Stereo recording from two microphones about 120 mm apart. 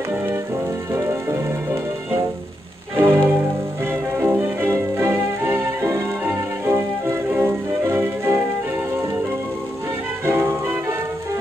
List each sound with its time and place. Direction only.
0.9 s music: 25° right (ahead or behind)
10.2 s music: 20° right (ahead or behind)